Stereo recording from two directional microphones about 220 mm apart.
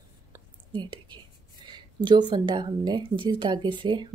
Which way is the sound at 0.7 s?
20° right (ahead or behind).